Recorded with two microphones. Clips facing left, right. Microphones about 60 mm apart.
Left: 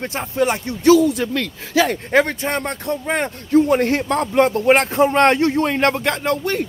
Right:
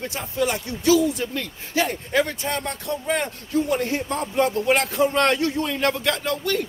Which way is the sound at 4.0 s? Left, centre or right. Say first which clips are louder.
Left 6 dB; left.